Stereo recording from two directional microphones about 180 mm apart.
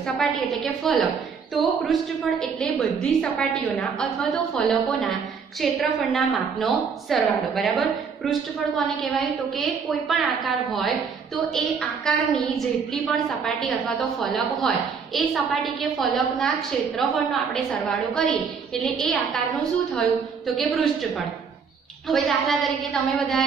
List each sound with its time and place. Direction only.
0.0 s a woman's voice: centre (ahead or behind)
22.0 s a woman's voice: centre (ahead or behind)